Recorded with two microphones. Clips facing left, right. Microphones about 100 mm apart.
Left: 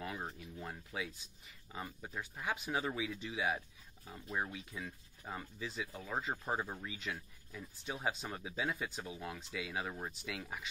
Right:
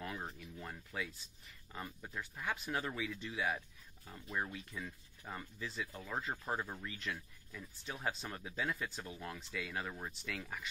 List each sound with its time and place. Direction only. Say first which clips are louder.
0.0 s speech: left 1 dB; 10° left (ahead or behind)